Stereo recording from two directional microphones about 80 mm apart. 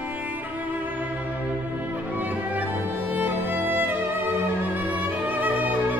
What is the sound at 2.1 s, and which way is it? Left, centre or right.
Music, right.